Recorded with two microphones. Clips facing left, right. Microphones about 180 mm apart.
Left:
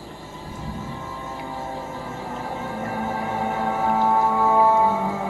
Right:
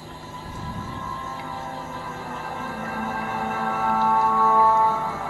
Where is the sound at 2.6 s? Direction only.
25° left (ahead or behind).